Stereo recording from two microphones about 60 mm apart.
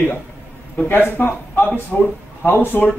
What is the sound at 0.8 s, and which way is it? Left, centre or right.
Speech, left.